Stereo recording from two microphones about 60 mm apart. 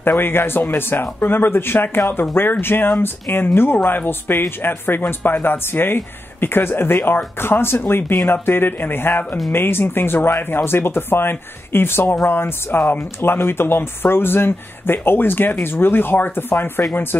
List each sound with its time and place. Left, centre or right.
0.0 s speech: left